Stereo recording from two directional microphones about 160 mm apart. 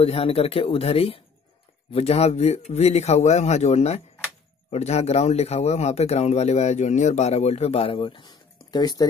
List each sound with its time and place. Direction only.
0.0 s speech: 35° left (ahead or behind)